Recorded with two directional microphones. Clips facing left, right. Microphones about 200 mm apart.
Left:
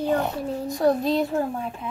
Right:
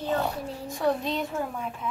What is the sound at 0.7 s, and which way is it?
Speech, 40° left (ahead or behind).